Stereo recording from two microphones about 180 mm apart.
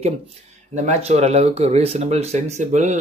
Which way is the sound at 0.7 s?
40° right (ahead or behind).